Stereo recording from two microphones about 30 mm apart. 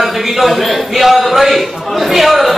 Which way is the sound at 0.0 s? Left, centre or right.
Centre.